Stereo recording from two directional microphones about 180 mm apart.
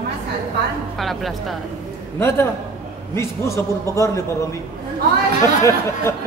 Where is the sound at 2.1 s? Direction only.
15° left (ahead or behind).